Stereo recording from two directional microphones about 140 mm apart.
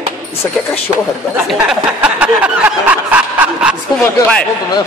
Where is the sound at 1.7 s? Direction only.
10° right (ahead or behind).